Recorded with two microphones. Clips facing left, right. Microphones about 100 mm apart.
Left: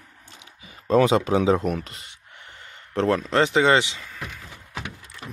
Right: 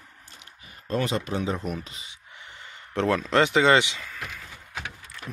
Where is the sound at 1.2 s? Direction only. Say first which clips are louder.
Left 8 dB; 90° left; by 2.1 s 70° left (ahead or behind).